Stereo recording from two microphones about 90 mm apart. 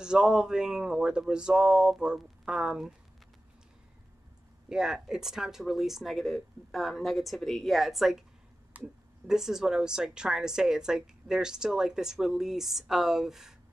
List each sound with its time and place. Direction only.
0.0 s speech: 10° right (ahead or behind)
4.6 s a woman's voice: 5° right (ahead or behind)
8.7 s a sound: 20° right (ahead or behind)
9.3 s a woman's voice: 5° right (ahead or behind)